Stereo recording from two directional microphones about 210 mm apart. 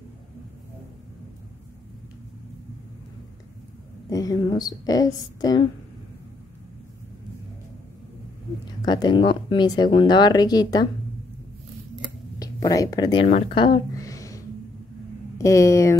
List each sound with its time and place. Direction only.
4.1 s a woman's voice: 15° left (ahead or behind)
8.6 s speech: 20° left (ahead or behind)
12.4 s speech: 15° left (ahead or behind)
13.3 s speech: 35° left (ahead or behind)
13.9 s a sound: 15° left (ahead or behind)
15.3 s a woman's voice: 15° left (ahead or behind)